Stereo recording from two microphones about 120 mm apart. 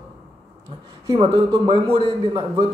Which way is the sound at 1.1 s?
45° right (ahead or behind).